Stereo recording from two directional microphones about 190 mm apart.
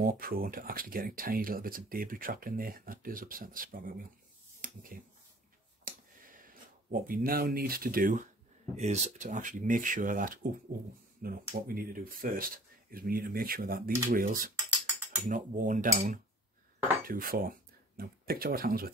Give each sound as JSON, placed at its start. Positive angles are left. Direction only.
{"t": 0.0, "sound": "speech", "side_deg": -50}
{"t": 4.6, "sound": "a sound", "side_deg": -45}
{"t": 5.9, "sound": "a sound", "side_deg": -45}
{"t": 8.7, "sound": "speech", "side_deg": -35}
{"t": 15.2, "sound": "cutlery", "side_deg": -40}
{"t": 17.1, "sound": "speech", "side_deg": -50}